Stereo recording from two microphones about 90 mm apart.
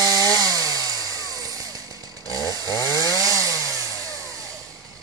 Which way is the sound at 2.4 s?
45° left (ahead or behind).